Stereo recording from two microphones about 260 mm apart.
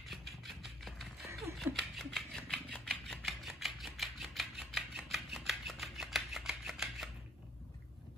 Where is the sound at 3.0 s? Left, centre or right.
Centre.